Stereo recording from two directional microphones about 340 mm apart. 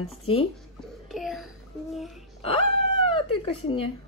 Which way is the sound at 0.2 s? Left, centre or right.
Centre.